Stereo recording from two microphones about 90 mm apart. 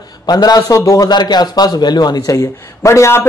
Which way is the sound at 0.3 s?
45° left (ahead or behind).